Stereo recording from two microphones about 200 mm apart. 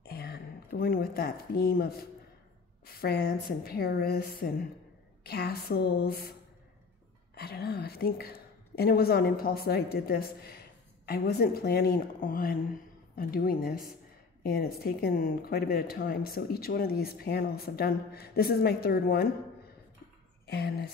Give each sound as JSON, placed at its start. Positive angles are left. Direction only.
{"t": 0.0, "sound": "speech", "side_deg": 50}
{"t": 7.3, "sound": "speech", "side_deg": 50}
{"t": 20.4, "sound": "speech", "side_deg": 55}